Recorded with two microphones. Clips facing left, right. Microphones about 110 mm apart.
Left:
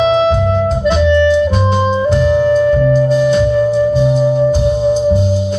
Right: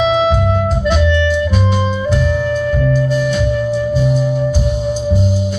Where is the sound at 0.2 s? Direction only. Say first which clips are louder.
Left 2 dB; 10° right (ahead or behind).